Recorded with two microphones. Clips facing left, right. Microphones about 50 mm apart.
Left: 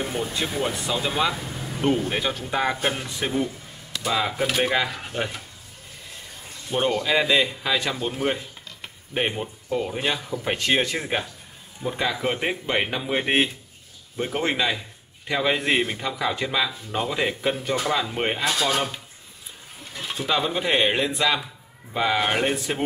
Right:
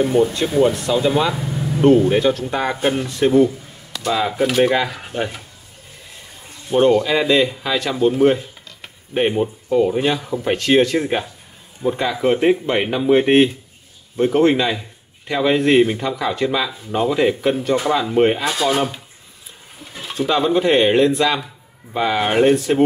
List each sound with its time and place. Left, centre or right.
0.3 s speech: centre
6.7 s speech: centre
18.4 s speech: centre
19.8 s speech: centre